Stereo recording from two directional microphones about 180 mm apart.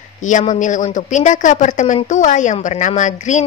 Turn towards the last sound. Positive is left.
turn(degrees=45)  # may be behind; listen again after turning